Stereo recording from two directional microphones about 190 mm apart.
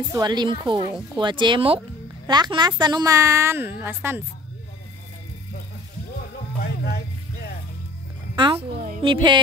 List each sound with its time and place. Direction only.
0.1 s a woman's voice: 20° right (ahead or behind)
8.4 s a woman's voice: 25° right (ahead or behind)